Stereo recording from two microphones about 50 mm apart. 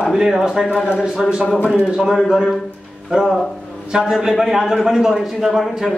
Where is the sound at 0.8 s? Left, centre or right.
Centre.